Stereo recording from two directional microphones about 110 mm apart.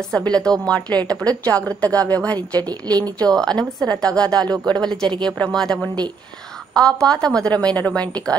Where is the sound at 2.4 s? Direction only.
35° right (ahead or behind).